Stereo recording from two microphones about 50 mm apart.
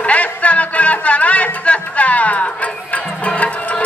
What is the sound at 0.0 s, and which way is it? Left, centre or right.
Music, left.